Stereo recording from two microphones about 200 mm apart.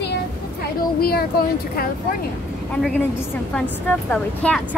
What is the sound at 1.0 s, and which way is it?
Speech, 50° left (ahead or behind).